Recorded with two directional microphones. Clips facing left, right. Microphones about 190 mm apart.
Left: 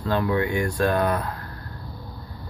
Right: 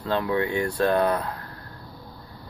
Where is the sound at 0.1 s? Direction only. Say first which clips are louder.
Left 1 dB; 25° right (ahead or behind).